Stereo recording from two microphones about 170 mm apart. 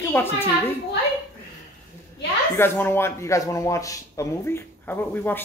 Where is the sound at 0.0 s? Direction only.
10° left (ahead or behind).